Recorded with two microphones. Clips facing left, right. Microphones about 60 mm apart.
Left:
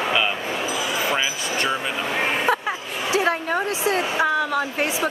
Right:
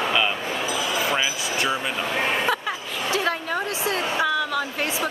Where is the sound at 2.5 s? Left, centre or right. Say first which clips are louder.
Left 3 dB; left.